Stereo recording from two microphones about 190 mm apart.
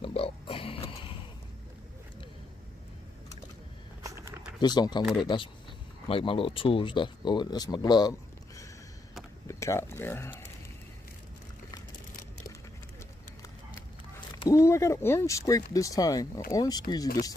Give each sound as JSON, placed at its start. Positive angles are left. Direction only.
{"t": 0.0, "sound": "pig", "side_deg": 30}
{"t": 4.0, "sound": "a sound", "side_deg": -15}
{"t": 4.6, "sound": "speech", "side_deg": 20}
{"t": 14.4, "sound": "speech", "side_deg": 15}